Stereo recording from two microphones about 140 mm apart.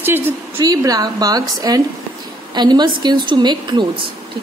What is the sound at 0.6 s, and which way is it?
A woman's voice, 25° right (ahead or behind).